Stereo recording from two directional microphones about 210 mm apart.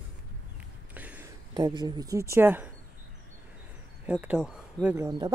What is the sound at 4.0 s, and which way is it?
Speech, 5° right (ahead or behind).